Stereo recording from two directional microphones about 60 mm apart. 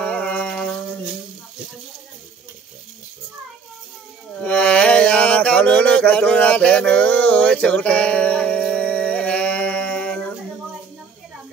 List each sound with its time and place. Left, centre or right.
0.0 s music: centre
0.5 s music: centre
4.4 s mantra: centre